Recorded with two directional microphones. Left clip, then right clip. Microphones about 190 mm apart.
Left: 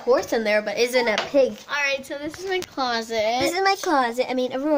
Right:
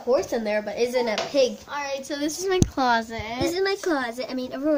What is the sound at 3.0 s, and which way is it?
Speech, 25° right (ahead or behind).